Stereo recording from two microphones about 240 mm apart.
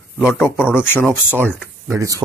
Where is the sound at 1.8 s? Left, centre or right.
Centre.